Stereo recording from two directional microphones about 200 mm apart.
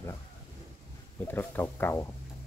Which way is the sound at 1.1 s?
10° left (ahead or behind).